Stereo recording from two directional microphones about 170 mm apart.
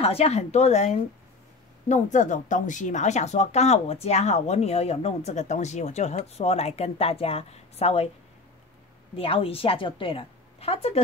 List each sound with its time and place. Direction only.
0.0 s speech: 35° left (ahead or behind)
9.1 s speech: 30° left (ahead or behind)